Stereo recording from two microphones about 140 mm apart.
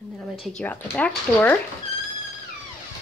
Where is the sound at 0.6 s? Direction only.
10° left (ahead or behind).